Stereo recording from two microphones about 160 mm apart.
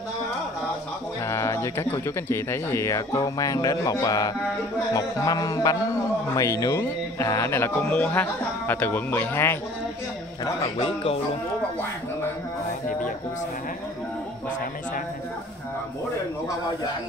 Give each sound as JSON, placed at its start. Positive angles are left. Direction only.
{"t": 1.2, "sound": "speech", "side_deg": 15}
{"t": 10.4, "sound": "a man's voice", "side_deg": 35}